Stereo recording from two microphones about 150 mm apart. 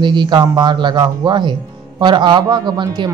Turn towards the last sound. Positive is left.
turn(degrees=-30)  # may be behind; listen again after turning